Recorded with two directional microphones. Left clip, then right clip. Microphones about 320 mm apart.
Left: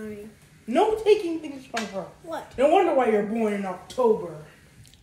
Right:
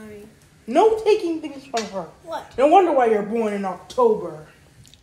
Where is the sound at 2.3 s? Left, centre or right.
Centre.